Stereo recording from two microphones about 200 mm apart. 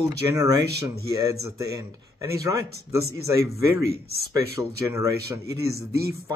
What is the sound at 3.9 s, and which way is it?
Speech, 50° right (ahead or behind).